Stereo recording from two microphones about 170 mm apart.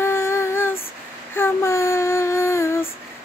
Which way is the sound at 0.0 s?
15° left (ahead or behind).